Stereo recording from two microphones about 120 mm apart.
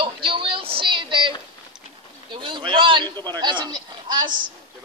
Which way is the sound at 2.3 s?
40° right (ahead or behind).